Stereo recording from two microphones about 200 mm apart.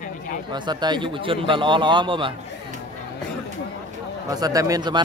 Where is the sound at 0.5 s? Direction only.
20° right (ahead or behind).